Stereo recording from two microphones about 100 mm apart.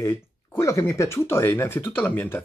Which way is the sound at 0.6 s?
30° left (ahead or behind).